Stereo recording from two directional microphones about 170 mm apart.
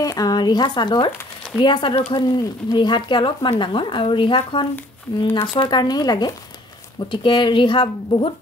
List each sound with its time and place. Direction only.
0.0 s speech: 20° left (ahead or behind)